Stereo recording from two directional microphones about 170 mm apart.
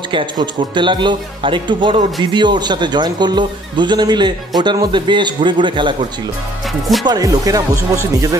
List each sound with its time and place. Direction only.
0.1 s speech: 30° right (ahead or behind)
7.1 s speech: 20° right (ahead or behind)